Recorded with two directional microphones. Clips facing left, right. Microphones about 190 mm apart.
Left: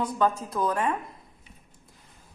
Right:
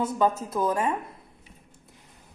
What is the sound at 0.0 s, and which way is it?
Speech, 5° right (ahead or behind).